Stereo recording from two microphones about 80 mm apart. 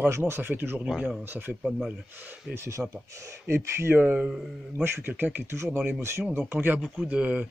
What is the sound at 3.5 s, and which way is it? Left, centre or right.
Speech, right.